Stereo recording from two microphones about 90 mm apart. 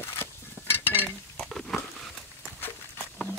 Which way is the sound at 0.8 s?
25° left (ahead or behind).